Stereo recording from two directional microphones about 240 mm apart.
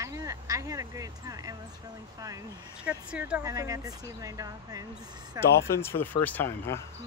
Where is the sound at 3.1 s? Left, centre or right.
Centre.